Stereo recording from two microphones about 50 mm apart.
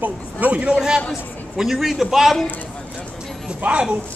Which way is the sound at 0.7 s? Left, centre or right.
Centre.